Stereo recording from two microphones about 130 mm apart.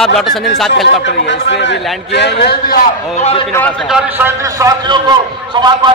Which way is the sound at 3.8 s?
5° right (ahead or behind).